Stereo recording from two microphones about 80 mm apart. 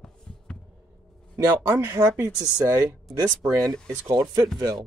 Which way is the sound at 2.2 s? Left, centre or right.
Right.